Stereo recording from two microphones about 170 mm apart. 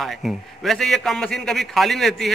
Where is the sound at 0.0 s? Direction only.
Centre (ahead or behind).